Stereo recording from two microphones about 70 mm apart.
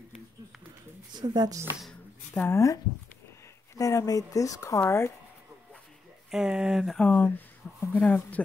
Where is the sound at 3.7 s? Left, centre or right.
Left.